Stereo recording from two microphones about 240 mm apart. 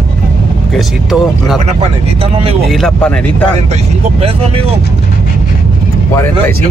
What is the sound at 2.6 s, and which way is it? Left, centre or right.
Speech, centre.